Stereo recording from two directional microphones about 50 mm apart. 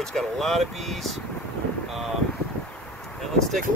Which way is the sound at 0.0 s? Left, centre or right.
Centre.